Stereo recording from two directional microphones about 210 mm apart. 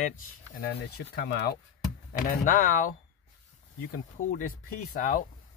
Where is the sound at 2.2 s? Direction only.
40° left (ahead or behind).